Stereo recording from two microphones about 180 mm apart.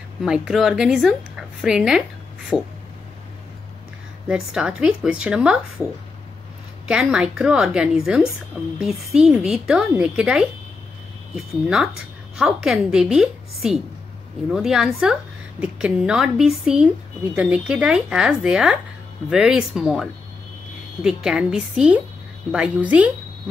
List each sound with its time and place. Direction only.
0.2 s a woman's voice: centre (ahead or behind)
4.3 s a woman's voice: 5° right (ahead or behind)
6.9 s a woman's voice: 5° right (ahead or behind)